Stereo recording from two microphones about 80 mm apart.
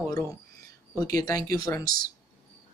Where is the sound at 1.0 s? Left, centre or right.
Left.